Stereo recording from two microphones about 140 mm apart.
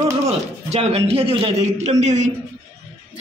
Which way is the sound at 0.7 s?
50° right (ahead or behind).